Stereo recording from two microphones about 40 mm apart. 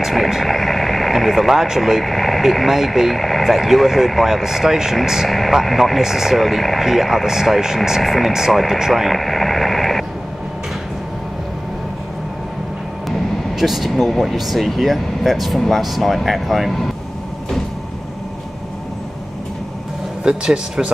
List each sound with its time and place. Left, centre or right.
0.0 s vehicle: centre
2.0 s speech: centre
3.4 s speech: centre
8.0 s speech: centre
8.3 s speech: centre
9.1 s radio: centre
13.6 s speech: centre
20.2 s speech: centre